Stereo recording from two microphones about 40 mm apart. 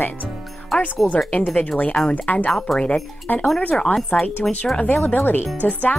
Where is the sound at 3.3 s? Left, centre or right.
Left.